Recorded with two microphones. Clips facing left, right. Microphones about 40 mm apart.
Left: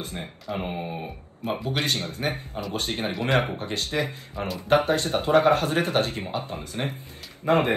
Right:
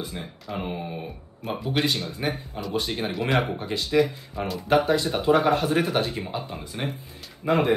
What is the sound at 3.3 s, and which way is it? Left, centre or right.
Speech, left.